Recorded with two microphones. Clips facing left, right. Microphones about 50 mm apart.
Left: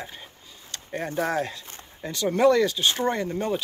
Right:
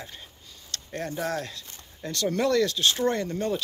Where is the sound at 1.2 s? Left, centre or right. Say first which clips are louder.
Left 4 dB; left.